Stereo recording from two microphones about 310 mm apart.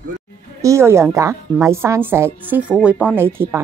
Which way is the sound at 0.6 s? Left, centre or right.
Centre.